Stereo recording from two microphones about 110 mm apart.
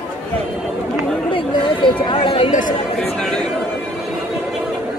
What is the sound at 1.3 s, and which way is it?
Chatter, 50° left (ahead or behind).